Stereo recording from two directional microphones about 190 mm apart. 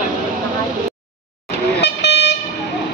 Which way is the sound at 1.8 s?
60° left (ahead or behind).